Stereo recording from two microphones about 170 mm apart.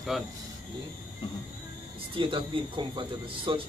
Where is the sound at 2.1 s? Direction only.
30° right (ahead or behind).